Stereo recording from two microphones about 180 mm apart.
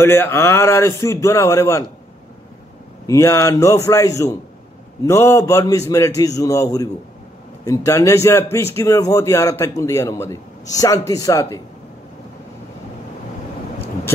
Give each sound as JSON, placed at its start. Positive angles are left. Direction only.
{"t": 0.0, "sound": "a man's voice", "side_deg": 15}
{"t": 3.1, "sound": "a man's voice", "side_deg": 15}